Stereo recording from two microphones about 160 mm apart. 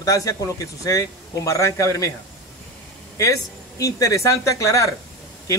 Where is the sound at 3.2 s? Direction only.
20° left (ahead or behind).